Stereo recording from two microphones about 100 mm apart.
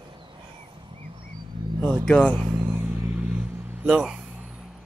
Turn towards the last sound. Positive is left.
turn(degrees=-5)  # may be behind; listen again after turning